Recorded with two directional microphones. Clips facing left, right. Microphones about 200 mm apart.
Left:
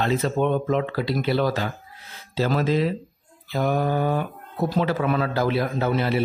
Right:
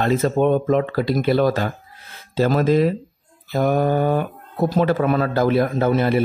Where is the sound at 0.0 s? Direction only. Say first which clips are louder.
Right 4 dB; 50° right (ahead or behind).